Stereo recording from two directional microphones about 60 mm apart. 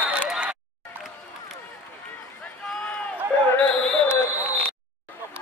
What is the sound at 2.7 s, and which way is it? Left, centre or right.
Run, centre.